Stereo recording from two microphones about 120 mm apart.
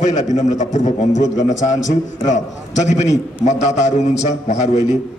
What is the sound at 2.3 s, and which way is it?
A man's voice, 75° left (ahead or behind).